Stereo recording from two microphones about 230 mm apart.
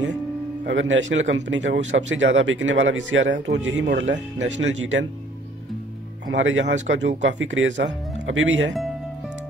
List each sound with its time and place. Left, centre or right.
0.7 s speech: right
6.3 s speech: right